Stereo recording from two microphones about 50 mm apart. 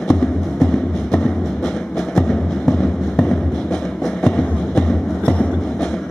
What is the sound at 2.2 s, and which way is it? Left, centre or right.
Music, centre.